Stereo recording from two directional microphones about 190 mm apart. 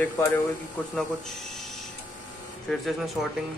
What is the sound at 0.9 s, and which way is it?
Speech, centre (ahead or behind).